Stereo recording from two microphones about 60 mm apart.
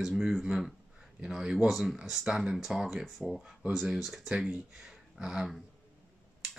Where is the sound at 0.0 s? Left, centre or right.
Centre.